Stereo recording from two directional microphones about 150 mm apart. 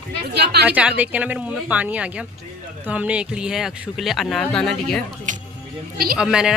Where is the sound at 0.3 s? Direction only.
90° right.